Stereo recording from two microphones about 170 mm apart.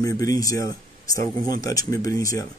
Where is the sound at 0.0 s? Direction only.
20° left (ahead or behind).